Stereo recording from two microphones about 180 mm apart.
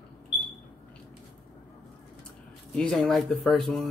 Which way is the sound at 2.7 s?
5° left (ahead or behind).